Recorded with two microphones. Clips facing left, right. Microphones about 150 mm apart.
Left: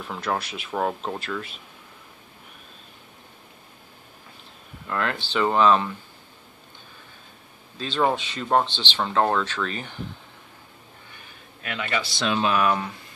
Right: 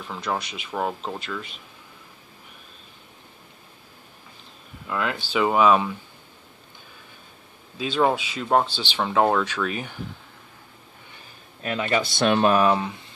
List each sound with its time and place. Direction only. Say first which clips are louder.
0.0 s speech: left 1 dB; centre (ahead or behind)
4.8 s speech: even; 5° right (ahead or behind)
7.7 s speech: right 2 dB; 10° right (ahead or behind)
11.6 s speech: right 5 dB; 35° right (ahead or behind)
12.0 s speech: right 5 dB; 55° right (ahead or behind)
12.5 s speech: right 3 dB; 25° right (ahead or behind)